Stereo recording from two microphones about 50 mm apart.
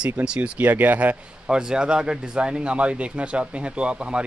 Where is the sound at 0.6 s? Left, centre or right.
Right.